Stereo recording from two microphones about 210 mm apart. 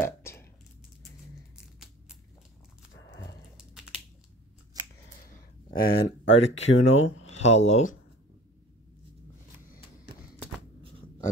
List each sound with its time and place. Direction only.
0.0 s burping: 10° left (ahead or behind)
3.5 s a sound: 5° right (ahead or behind)
4.7 s scissors: 15° right (ahead or behind)
5.7 s speech: 45° left (ahead or behind); by 7.2 s 70° left (ahead or behind)
7.2 s speech: 30° left (ahead or behind)